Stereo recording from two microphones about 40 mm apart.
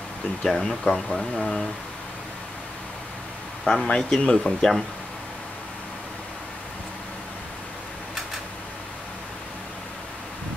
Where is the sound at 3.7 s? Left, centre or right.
Left.